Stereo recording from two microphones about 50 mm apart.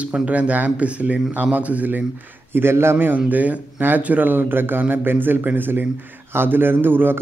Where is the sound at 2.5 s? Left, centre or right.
Right.